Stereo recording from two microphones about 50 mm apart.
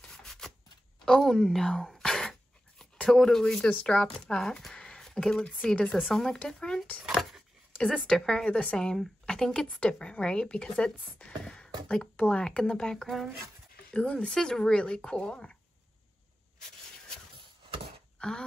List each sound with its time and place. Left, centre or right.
0.1 s a sound: centre
2.8 s speech: centre
6.1 s speech: centre
7.2 s dog: centre
7.7 s a sound: left
8.1 s speech: centre
8.5 s speech: left
8.7 s speech: centre
12.9 s speech: centre
13.9 s speech: centre
18.2 s a sound: left